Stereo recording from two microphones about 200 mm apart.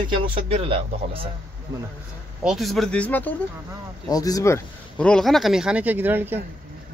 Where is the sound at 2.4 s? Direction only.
Centre (ahead or behind).